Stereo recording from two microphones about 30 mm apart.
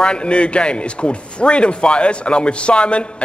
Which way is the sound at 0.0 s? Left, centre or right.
Left.